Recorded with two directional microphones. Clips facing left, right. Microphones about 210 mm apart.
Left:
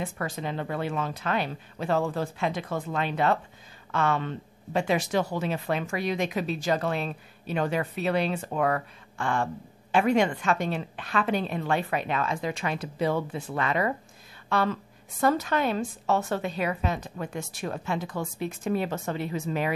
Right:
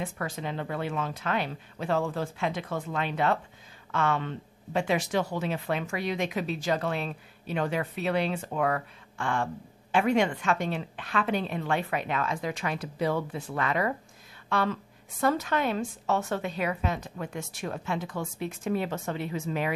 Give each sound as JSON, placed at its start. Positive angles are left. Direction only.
{"t": 0.0, "sound": "a woman's voice", "side_deg": 40}
{"t": 14.5, "sound": "a woman's voice", "side_deg": 40}